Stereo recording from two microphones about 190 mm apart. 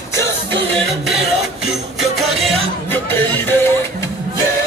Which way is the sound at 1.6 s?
Centre (ahead or behind).